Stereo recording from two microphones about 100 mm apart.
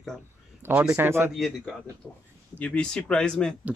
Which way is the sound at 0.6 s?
25° right (ahead or behind).